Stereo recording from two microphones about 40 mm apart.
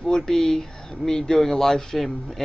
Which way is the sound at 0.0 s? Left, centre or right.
Centre.